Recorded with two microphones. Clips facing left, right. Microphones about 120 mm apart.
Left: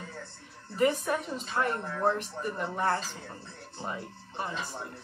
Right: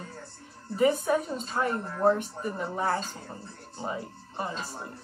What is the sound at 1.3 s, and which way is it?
Speech, centre (ahead or behind).